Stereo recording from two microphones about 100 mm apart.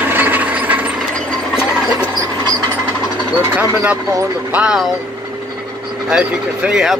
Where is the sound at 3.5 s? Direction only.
15° right (ahead or behind).